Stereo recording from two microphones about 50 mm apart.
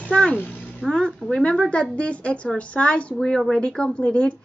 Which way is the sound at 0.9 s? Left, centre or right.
Centre.